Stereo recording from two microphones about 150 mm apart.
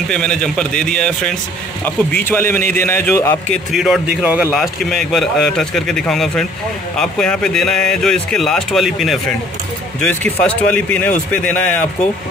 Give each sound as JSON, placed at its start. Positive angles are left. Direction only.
{"t": 0.1, "sound": "a man's voice", "side_deg": 5}
{"t": 3.7, "sound": "speech", "side_deg": 0}
{"t": 4.5, "sound": "a man's voice", "side_deg": 0}